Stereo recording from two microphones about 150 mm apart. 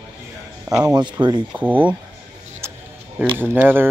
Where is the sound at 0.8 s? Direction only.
30° right (ahead or behind).